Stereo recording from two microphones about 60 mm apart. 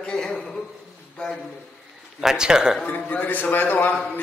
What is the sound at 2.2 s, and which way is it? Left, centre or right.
Speech, centre.